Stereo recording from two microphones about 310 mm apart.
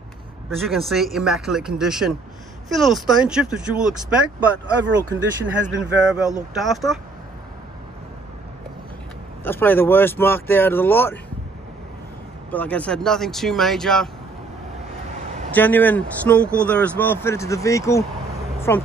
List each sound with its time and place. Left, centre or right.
0.6 s speech: centre
4.8 s speech: right
5.8 s speech: centre
9.4 s speech: centre
12.4 s speech: centre
15.5 s speech: centre